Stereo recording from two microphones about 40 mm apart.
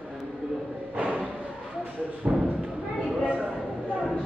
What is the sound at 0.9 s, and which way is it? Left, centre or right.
Music, right.